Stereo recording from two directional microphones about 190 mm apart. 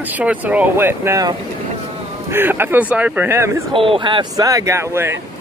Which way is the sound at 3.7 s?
25° right (ahead or behind).